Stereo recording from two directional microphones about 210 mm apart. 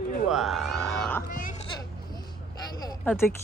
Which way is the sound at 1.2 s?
45° left (ahead or behind).